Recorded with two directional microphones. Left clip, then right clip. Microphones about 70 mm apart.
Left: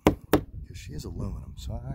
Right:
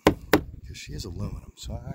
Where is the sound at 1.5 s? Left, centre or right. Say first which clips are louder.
Right 2 dB; centre.